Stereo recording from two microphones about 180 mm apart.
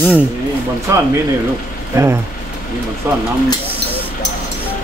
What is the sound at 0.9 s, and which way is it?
Speech, 15° right (ahead or behind).